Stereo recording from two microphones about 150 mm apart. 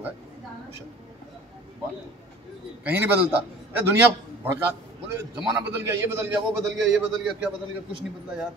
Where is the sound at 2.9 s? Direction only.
15° right (ahead or behind).